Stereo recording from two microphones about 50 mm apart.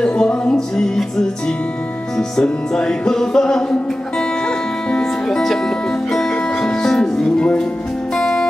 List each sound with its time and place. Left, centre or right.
0.0 s music: centre